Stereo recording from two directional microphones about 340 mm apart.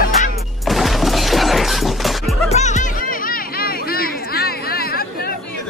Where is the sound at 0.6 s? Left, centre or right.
Centre.